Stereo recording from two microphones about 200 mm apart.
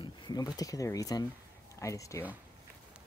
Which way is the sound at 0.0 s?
20° left (ahead or behind).